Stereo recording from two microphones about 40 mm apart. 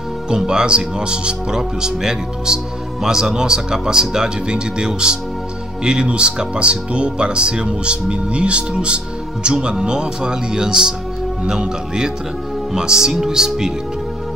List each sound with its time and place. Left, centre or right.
0.5 s speech: right